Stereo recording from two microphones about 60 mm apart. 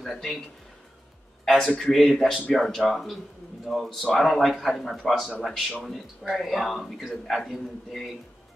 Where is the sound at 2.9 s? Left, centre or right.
Centre.